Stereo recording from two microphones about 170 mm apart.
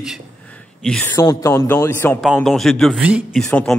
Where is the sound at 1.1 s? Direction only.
20° left (ahead or behind).